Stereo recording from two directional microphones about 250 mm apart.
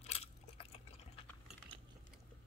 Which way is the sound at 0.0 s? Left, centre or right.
Left.